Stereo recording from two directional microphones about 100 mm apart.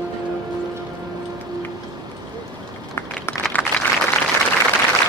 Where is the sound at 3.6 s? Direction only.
20° left (ahead or behind).